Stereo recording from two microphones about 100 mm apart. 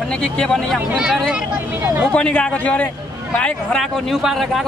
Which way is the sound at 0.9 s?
10° right (ahead or behind).